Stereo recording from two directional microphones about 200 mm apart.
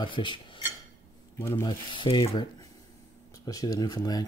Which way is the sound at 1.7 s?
25° left (ahead or behind).